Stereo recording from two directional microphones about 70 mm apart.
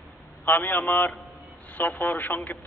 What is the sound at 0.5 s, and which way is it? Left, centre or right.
A man's voice, left.